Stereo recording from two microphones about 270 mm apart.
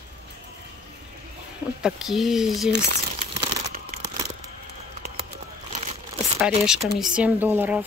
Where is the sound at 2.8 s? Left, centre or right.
Right.